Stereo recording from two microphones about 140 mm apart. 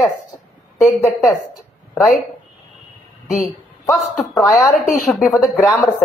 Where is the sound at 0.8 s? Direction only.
Centre (ahead or behind).